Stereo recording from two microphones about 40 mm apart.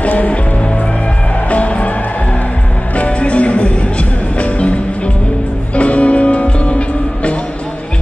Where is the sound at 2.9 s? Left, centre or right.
Left.